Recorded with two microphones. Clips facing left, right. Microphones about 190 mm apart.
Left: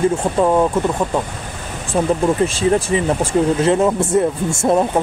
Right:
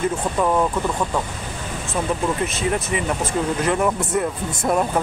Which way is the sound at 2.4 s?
30° left (ahead or behind).